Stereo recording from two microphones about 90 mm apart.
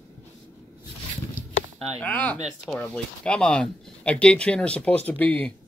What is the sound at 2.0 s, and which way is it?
Speech, 20° left (ahead or behind).